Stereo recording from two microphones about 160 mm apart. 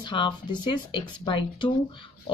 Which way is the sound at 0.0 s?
30° left (ahead or behind).